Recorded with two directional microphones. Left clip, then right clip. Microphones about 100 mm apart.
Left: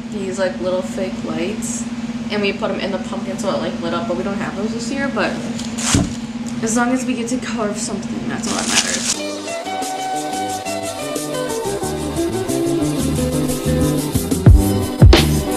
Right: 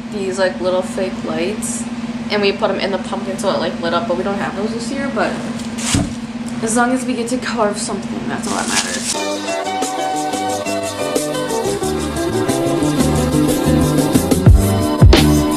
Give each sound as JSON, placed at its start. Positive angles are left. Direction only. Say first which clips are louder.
{"t": 2.3, "sound": "a man's voice", "louder": "right 4 dB", "side_deg": -20}
{"t": 6.6, "sound": "a woman's voice", "louder": "right 3 dB", "side_deg": 15}
{"t": 12.2, "sound": "music", "louder": "right 2 dB", "side_deg": 0}
{"t": 14.4, "sound": "music", "louder": "right 1 dB", "side_deg": 0}